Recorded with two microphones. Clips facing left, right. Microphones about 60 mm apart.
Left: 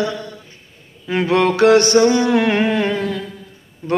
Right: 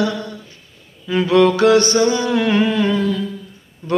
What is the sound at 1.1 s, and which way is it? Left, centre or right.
Mantra, left.